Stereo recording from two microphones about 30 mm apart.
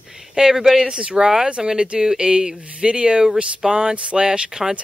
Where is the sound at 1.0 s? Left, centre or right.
Right.